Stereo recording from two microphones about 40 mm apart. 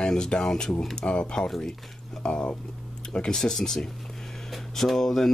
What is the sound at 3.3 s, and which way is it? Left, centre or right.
Speech, centre.